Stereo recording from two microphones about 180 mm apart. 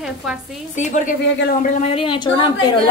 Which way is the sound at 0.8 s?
45° left (ahead or behind).